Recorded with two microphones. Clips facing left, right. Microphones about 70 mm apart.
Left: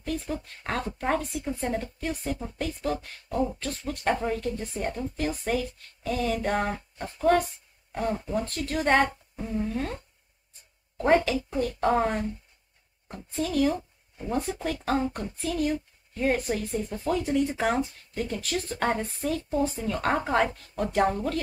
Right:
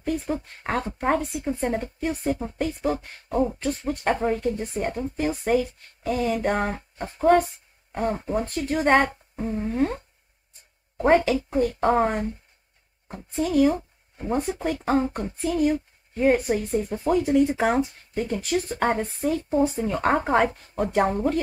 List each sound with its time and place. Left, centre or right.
0.0 s speech: right
6.6 s speech: right
11.1 s speech: centre
13.4 s speech: centre
13.7 s a sound: right
14.4 s speech: centre